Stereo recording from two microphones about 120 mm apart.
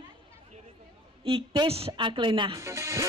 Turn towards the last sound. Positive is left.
turn(degrees=-25)  # may be behind; listen again after turning